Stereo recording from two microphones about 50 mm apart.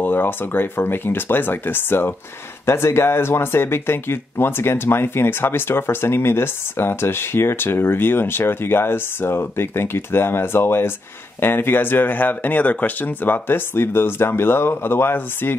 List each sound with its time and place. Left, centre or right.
0.0 s speech: left